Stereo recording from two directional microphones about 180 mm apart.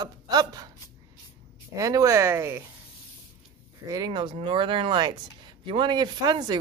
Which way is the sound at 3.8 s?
20° right (ahead or behind).